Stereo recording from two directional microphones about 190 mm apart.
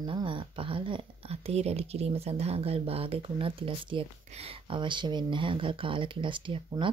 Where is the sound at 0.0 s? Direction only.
25° right (ahead or behind).